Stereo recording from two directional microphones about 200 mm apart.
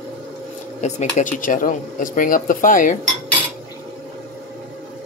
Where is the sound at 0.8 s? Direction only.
40° left (ahead or behind).